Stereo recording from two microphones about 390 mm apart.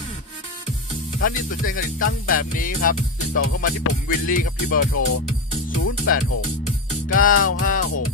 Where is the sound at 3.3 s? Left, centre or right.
Left.